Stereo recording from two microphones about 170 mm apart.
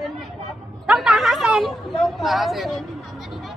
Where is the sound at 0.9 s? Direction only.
Centre (ahead or behind).